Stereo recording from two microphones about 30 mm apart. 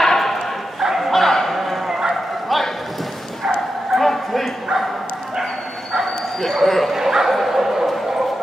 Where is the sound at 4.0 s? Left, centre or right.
Centre.